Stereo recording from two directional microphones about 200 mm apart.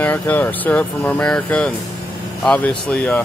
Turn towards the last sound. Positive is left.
turn(degrees=10)  # may be behind; listen again after turning